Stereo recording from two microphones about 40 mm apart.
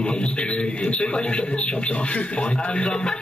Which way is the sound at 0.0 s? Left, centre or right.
Left.